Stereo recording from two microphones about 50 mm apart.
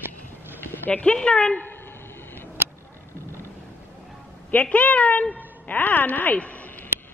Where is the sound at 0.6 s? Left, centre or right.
Left.